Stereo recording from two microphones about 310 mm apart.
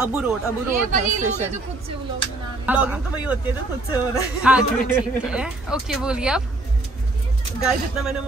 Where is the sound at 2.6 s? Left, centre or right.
Centre.